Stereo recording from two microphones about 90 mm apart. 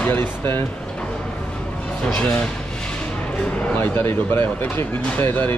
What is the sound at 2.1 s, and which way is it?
Speech, 10° left (ahead or behind).